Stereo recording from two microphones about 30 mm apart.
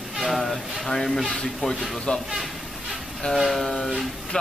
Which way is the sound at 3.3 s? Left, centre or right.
Centre.